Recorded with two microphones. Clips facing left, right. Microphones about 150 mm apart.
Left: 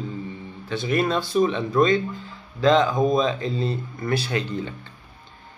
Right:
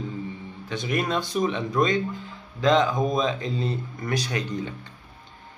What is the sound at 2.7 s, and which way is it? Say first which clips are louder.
Speech: left 2 dB; 25° left (ahead or behind).